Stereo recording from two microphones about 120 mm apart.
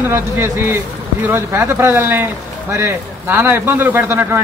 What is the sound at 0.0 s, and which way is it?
Speech, 20° right (ahead or behind).